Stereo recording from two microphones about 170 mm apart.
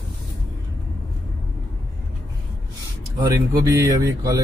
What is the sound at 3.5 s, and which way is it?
Speech, 20° right (ahead or behind).